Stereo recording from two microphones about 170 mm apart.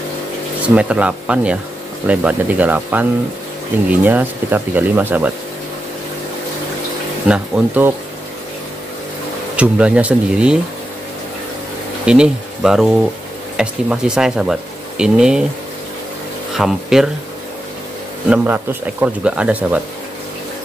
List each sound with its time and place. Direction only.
0.6 s speech: 5° right (ahead or behind)
7.2 s speech: 5° right (ahead or behind)
9.6 s speech: 5° right (ahead or behind)
12.1 s speech: 5° right (ahead or behind)
16.5 s speech: centre (ahead or behind)
18.3 s speech: 10° right (ahead or behind)